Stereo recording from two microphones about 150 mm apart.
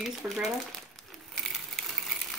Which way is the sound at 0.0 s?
Centre (ahead or behind).